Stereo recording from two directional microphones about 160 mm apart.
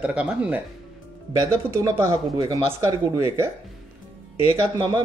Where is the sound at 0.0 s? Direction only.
5° right (ahead or behind).